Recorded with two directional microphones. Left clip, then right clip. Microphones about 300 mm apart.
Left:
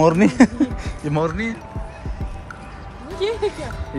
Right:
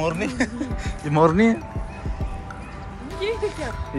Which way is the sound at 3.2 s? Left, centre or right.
Left.